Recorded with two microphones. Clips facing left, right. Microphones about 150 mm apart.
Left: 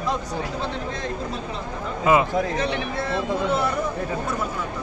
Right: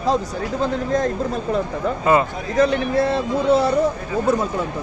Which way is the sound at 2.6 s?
40° right (ahead or behind).